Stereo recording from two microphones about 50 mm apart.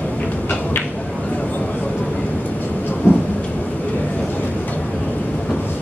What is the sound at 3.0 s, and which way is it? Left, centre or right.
Thunder, left.